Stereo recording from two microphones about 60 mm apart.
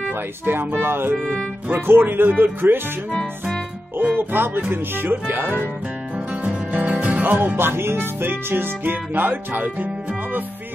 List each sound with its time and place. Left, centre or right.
0.1 s speech: right
4.0 s speech: right
6.1 s music: right